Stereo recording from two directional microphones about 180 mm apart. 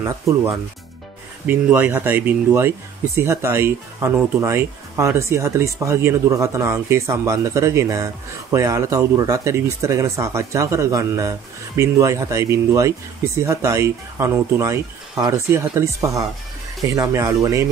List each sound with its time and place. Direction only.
1.4 s speech: 10° right (ahead or behind)